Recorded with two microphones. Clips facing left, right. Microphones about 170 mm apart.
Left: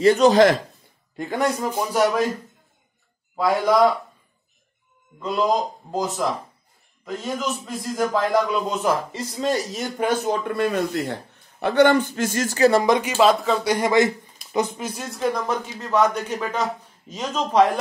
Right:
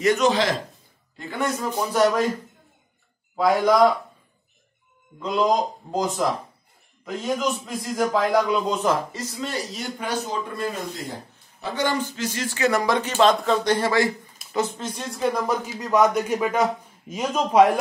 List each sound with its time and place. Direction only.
0.0 s a man's voice: 35° left (ahead or behind)
1.6 s speech: 10° left (ahead or behind)
3.3 s speech: centre (ahead or behind)
5.2 s speech: 5° left (ahead or behind)
9.4 s a man's voice: 45° left (ahead or behind)
12.8 s speech: 15° left (ahead or behind)
13.7 s a man's voice: 20° left (ahead or behind); by 17.6 s 10° right (ahead or behind)